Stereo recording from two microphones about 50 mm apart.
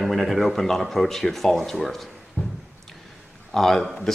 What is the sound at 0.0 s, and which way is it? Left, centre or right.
Speech, centre.